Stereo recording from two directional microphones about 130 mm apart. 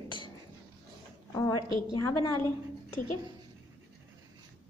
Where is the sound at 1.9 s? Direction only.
30° left (ahead or behind).